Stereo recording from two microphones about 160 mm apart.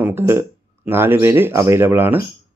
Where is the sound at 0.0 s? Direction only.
15° right (ahead or behind).